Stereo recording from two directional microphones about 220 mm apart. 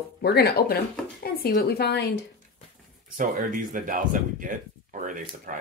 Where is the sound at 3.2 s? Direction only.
35° right (ahead or behind).